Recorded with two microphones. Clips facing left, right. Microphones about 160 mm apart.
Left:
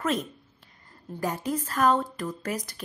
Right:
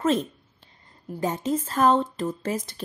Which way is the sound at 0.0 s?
25° right (ahead or behind).